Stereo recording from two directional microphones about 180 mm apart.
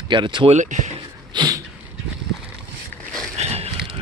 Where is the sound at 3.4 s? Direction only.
35° right (ahead or behind).